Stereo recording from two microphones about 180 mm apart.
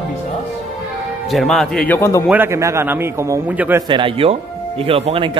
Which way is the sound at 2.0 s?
15° left (ahead or behind).